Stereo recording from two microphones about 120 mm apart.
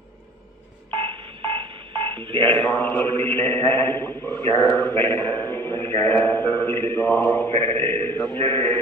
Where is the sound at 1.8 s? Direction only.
45° right (ahead or behind).